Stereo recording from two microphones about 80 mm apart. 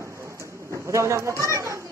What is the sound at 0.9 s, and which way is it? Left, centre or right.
Speech, right.